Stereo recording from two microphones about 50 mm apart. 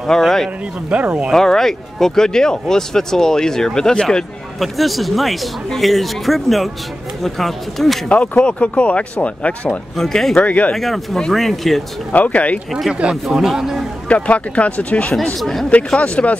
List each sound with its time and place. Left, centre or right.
0.0 s speech: centre
0.8 s speech: right
1.3 s speech: centre
4.6 s a man's voice: centre
8.1 s speech: left
9.9 s speech: centre
10.4 s speech: left
10.7 s a man's voice: centre
12.1 s speech: left
13.1 s a man's voice: centre
14.0 s speech: left